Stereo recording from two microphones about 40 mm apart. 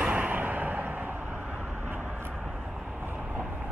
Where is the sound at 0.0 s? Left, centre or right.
Right.